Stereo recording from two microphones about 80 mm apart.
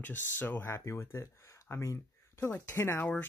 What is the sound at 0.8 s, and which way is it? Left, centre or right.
Speech, left.